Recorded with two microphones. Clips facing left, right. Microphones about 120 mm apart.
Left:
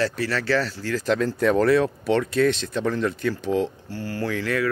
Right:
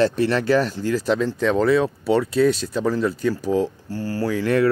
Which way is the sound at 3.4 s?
40° right (ahead or behind).